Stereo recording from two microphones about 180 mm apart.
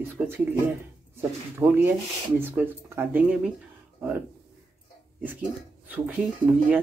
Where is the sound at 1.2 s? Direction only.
10° right (ahead or behind).